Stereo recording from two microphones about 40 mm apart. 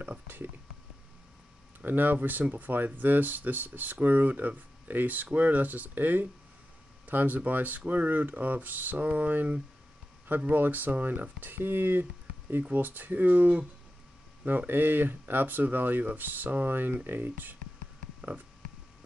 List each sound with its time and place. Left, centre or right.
1.9 s speech: right
14.7 s speech: right